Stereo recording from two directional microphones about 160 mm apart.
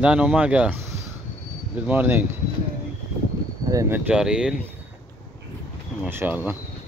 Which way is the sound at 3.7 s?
20° right (ahead or behind).